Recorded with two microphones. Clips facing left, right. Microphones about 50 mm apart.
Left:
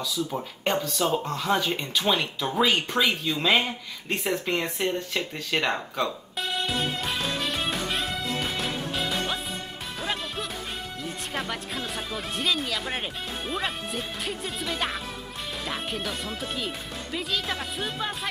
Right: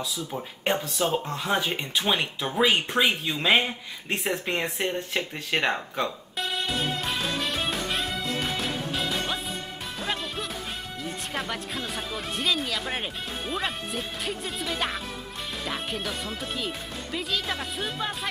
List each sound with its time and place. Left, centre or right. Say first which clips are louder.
0.8 s speech: left 1 dB; right
6.4 s music: even; centre
11.3 s speech: left 1 dB; centre